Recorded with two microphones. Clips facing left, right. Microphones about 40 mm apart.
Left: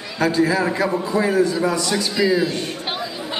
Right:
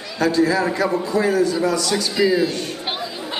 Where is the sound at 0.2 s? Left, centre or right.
Centre.